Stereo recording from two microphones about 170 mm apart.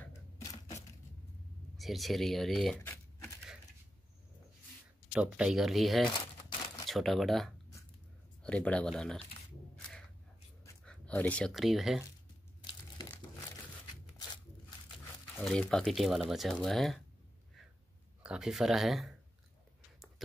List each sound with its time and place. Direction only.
0.4 s a sound: 20° left (ahead or behind)
1.8 s speech: centre (ahead or behind)
2.8 s typing: 15° left (ahead or behind)
5.1 s speech: 5° right (ahead or behind)
10.9 s speech: 5° left (ahead or behind)
15.4 s speech: 5° left (ahead or behind)
18.2 s speech: 5° right (ahead or behind)
20.2 s speech: centre (ahead or behind)